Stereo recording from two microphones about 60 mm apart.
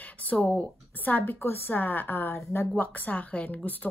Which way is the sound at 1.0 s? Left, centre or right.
Left.